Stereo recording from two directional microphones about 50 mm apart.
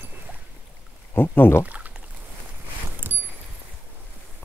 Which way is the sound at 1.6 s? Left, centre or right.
Right.